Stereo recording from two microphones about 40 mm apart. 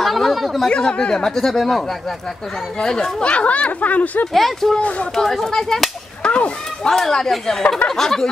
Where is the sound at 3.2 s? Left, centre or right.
Left.